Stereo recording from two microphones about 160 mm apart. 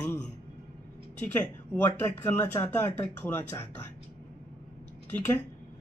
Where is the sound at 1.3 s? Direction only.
10° left (ahead or behind).